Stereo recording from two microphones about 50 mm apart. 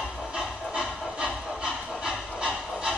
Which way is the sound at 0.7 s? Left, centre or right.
Centre.